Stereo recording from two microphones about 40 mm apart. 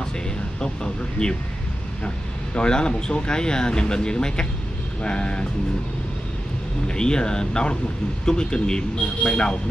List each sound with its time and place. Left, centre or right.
1.2 s speech: left
2.5 s speech: left
6.9 s speech: left